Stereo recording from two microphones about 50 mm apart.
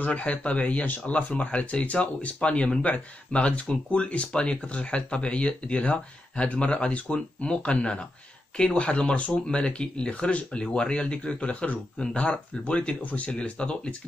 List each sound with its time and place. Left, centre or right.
0.0 s speech: left